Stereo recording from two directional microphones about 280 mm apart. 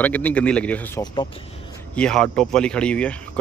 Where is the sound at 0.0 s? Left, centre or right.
Centre.